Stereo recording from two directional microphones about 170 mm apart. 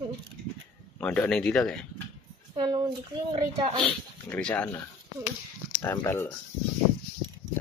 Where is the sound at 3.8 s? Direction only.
5° left (ahead or behind).